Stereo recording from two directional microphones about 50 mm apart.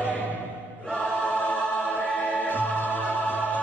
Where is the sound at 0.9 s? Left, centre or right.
Left.